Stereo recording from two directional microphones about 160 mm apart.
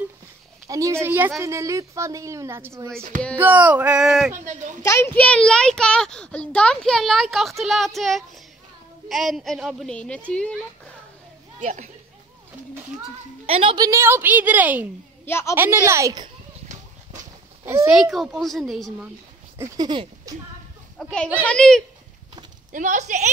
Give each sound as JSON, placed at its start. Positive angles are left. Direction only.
{"t": 0.7, "sound": "a woman's voice", "side_deg": -20}
{"t": 4.8, "sound": "a child's voice", "side_deg": 15}
{"t": 11.6, "sound": "speech", "side_deg": -50}
{"t": 13.5, "sound": "a woman's voice", "side_deg": -35}
{"t": 13.7, "sound": "a woman's voice", "side_deg": -20}
{"t": 15.2, "sound": "a child's voice", "side_deg": 15}
{"t": 15.5, "sound": "a woman's voice", "side_deg": -15}
{"t": 16.6, "sound": "a sound", "side_deg": -50}
{"t": 18.1, "sound": "speech", "side_deg": 0}
{"t": 19.6, "sound": "a woman's voice", "side_deg": -25}
{"t": 21.0, "sound": "speech", "side_deg": 5}
{"t": 22.7, "sound": "speech", "side_deg": -55}